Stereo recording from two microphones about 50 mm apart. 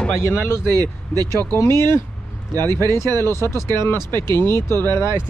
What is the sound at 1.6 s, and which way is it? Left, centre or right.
Speech, left.